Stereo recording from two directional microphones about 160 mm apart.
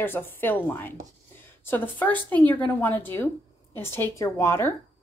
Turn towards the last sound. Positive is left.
turn(degrees=15)  # may be behind; listen again after turning